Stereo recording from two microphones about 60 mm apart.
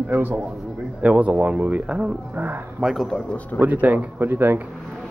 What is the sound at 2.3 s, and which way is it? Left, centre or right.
Speech, right.